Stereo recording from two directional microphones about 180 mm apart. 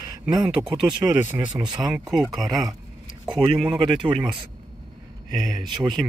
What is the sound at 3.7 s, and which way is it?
Speech, 25° right (ahead or behind).